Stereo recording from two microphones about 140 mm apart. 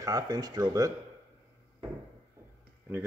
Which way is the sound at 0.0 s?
25° right (ahead or behind).